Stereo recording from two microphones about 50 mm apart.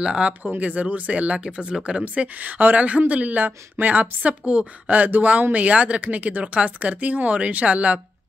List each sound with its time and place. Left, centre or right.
0.0 s speech: centre
0.4 s speech: right
2.4 s speech: right